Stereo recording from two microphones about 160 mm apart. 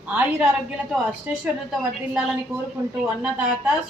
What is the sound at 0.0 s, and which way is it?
A woman's voice, 5° right (ahead or behind).